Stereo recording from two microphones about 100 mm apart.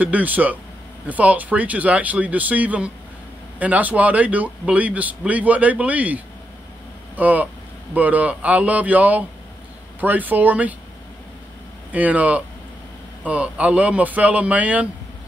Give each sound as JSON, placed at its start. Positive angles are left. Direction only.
{"t": 0.0, "sound": "speech", "side_deg": -15}
{"t": 11.9, "sound": "speech", "side_deg": -15}